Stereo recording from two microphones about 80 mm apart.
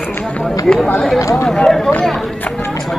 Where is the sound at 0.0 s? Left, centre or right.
Centre.